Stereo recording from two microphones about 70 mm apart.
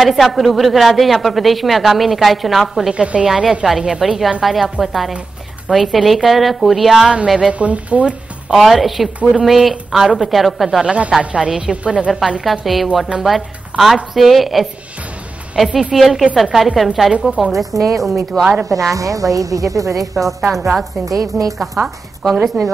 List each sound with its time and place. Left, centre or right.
0.0 s a woman's voice: centre
2.9 s speech: centre
3.3 s a woman's voice: centre
7.3 s speech: centre
8.5 s a woman's voice: centre
12.4 s a woman's voice: centre
18.4 s speech: centre
18.9 s a woman's voice: right
20.2 s a woman's voice: centre
21.0 s a woman's voice: right
22.2 s a woman's voice: centre